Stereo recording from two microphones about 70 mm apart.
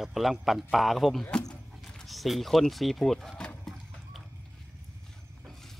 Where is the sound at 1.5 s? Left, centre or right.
Centre.